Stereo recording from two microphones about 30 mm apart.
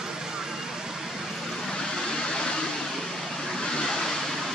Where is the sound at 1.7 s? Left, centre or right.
Left.